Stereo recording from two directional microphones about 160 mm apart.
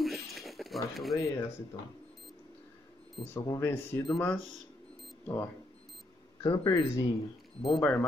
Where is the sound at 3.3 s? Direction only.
15° left (ahead or behind).